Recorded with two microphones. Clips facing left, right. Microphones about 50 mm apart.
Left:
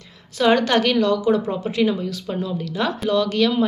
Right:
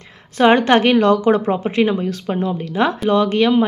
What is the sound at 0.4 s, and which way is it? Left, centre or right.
Speech, right.